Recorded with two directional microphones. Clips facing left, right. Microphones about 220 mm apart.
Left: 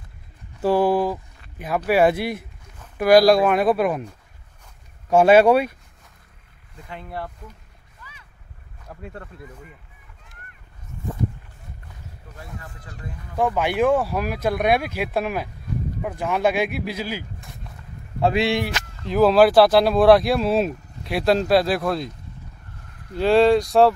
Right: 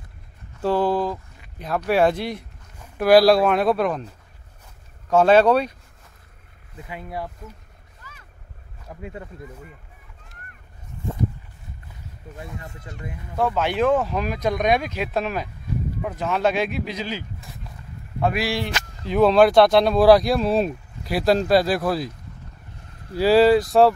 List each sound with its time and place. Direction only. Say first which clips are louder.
0.6 s a sound: left 2 dB; 10° left (ahead or behind)
1.9 s speech: left 1 dB; 5° left (ahead or behind)
5.1 s speech: left 2 dB; 10° left (ahead or behind)
6.9 s speech: right 1 dB; 5° right (ahead or behind)
8.0 s boat: even; 45° right (ahead or behind)
8.8 s speech: right 2 dB; 10° right (ahead or behind)
12.5 s speech: right 2 dB; 20° right (ahead or behind)
13.4 s speech: left 1 dB; 15° left (ahead or behind)
18.2 s speech: left 3 dB; 25° left (ahead or behind)
19.0 s speech: even; centre (ahead or behind)
23.1 s speech: right 1 dB; 5° right (ahead or behind)